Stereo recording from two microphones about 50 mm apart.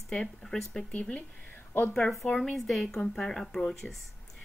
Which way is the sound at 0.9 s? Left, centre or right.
Left.